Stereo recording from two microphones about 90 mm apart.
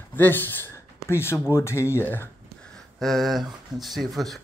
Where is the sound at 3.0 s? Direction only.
Centre (ahead or behind).